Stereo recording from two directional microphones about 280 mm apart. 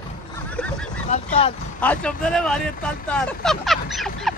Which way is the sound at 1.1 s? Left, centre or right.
Centre.